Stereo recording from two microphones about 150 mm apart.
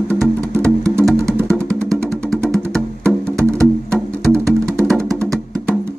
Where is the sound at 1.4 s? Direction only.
Centre (ahead or behind).